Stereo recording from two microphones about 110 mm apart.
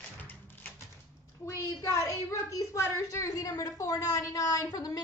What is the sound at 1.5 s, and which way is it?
A woman's voice, 25° left (ahead or behind).